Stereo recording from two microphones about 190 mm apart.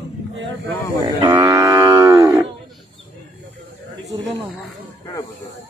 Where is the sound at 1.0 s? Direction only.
20° right (ahead or behind).